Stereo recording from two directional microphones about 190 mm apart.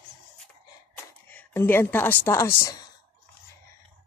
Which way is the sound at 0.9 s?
10° left (ahead or behind).